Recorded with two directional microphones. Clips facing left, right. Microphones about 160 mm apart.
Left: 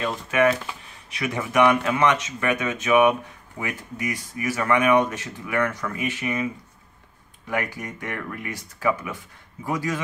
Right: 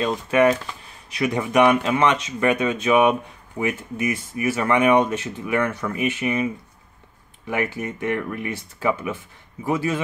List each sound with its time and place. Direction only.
0.0 s speech: 35° right (ahead or behind)